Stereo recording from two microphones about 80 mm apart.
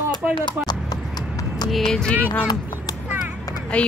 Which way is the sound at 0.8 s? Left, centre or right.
Left.